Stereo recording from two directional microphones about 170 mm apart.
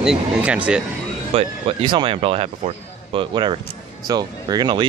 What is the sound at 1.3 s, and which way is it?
Speech, 30° right (ahead or behind).